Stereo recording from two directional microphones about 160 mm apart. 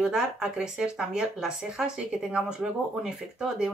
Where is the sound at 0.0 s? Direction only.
5° right (ahead or behind).